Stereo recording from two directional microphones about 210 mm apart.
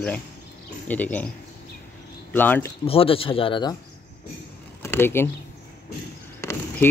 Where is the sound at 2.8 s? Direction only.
25° left (ahead or behind).